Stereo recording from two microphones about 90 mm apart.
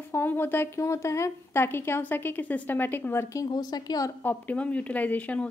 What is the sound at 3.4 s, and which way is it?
Speech, 45° left (ahead or behind).